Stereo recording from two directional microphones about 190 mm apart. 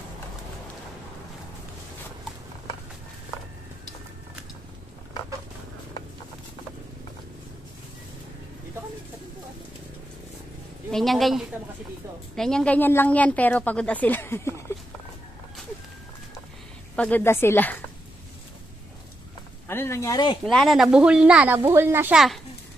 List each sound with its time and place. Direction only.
10.9 s a woman's voice: centre (ahead or behind)
16.9 s speech: 10° left (ahead or behind)
19.7 s speech: 15° left (ahead or behind)
20.4 s speech: centre (ahead or behind)